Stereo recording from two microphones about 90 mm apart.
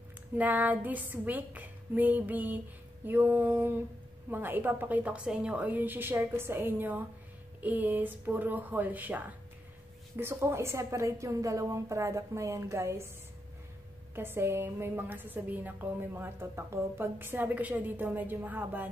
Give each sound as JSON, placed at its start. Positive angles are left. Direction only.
{"t": 0.4, "sound": "a woman's voice", "side_deg": -20}
{"t": 14.1, "sound": "a woman's voice", "side_deg": -25}